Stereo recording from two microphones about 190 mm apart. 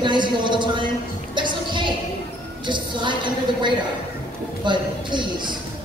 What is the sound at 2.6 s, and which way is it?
A woman's voice, 25° right (ahead or behind).